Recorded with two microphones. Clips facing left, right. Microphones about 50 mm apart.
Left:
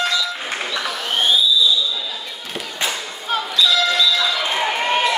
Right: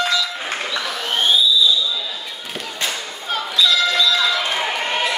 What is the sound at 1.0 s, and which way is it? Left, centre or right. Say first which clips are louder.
Fireworks: even; centre.